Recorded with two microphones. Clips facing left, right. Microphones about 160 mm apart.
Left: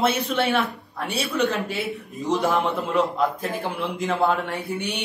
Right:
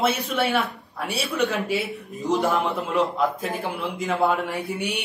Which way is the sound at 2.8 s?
Centre (ahead or behind).